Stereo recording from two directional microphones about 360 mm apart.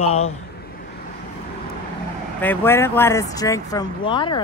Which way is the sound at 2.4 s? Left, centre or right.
Centre.